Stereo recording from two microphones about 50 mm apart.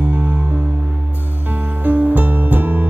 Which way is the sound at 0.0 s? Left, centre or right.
Right.